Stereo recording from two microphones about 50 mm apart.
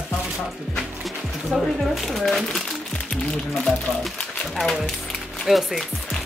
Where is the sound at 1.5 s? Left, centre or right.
Centre.